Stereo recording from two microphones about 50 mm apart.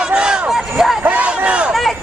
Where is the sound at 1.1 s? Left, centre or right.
Right.